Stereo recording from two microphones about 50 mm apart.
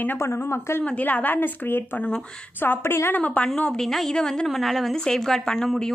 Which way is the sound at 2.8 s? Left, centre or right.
Left.